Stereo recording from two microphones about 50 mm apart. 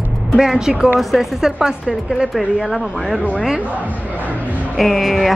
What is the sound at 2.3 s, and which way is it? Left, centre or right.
Speech, centre.